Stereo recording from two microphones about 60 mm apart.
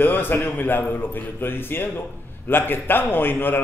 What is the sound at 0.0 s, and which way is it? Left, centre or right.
A man's voice, left.